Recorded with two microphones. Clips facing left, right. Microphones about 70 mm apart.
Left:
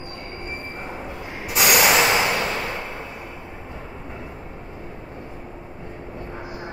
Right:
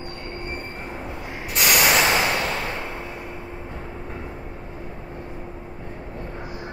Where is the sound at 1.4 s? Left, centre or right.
Centre.